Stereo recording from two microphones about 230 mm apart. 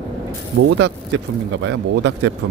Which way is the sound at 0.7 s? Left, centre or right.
Right.